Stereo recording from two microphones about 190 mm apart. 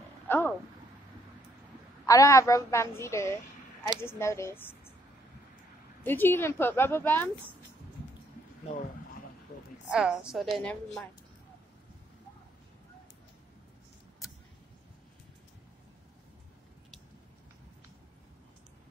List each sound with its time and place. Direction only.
0.3 s speech: 10° left (ahead or behind)
2.0 s a woman's voice: 15° left (ahead or behind)
6.0 s a woman's voice: 10° left (ahead or behind)
9.8 s a woman's voice: 5° right (ahead or behind)